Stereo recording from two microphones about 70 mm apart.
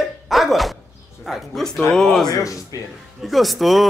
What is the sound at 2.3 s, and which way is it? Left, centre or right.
Speech, left.